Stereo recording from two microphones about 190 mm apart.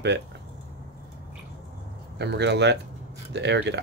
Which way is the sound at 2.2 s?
65° right (ahead or behind).